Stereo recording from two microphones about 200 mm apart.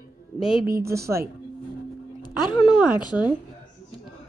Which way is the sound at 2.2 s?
20° left (ahead or behind).